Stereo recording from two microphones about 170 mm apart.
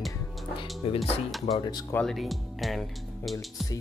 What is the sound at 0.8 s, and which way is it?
Speech, 35° left (ahead or behind).